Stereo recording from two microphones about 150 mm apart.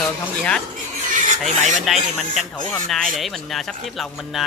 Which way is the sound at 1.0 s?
60° right (ahead or behind).